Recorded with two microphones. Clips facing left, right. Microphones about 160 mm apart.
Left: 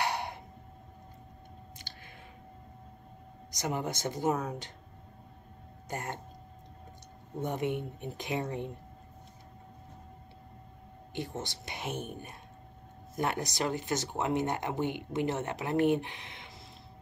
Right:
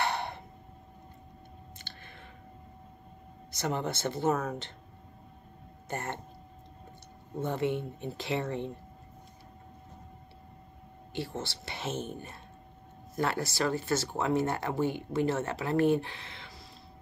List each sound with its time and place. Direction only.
0.0 s a sound: 10° left (ahead or behind)
1.8 s a sound: 10° left (ahead or behind)
3.5 s speech: 10° left (ahead or behind)
5.9 s speech: 10° left (ahead or behind)
7.4 s speech: 15° left (ahead or behind)
11.1 s speech: 20° left (ahead or behind)